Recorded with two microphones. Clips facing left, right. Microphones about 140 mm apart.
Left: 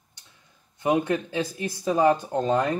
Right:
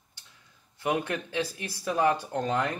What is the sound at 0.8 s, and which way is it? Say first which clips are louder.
Speech: left 6 dB; 20° left (ahead or behind).